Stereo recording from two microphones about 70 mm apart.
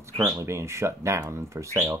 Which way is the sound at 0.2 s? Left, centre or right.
Right.